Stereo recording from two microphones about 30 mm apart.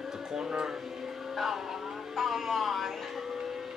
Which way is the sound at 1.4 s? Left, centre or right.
Centre.